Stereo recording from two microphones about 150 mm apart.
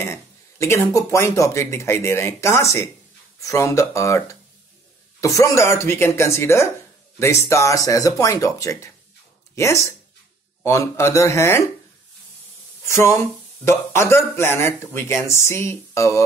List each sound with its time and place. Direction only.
0.0 s speech: 20° left (ahead or behind)
12.8 s speech: 20° left (ahead or behind)